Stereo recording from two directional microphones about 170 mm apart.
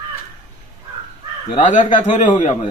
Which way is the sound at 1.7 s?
45° left (ahead or behind).